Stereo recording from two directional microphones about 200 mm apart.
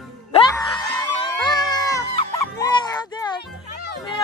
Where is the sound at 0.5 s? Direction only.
20° left (ahead or behind).